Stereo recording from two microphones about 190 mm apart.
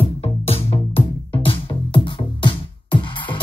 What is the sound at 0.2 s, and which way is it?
Music, 30° left (ahead or behind).